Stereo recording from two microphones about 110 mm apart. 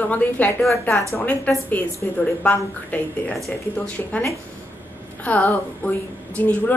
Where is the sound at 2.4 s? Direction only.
15° left (ahead or behind).